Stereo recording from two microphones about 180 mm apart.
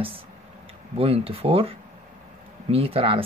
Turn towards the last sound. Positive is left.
turn(degrees=-30)  # may be behind; listen again after turning